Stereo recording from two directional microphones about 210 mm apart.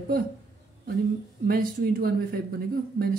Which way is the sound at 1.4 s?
45° right (ahead or behind).